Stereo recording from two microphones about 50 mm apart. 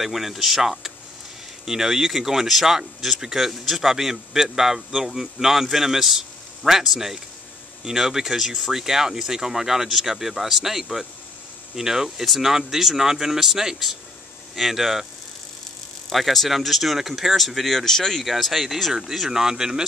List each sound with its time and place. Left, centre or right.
0.0 s speech: centre
16.1 s speech: centre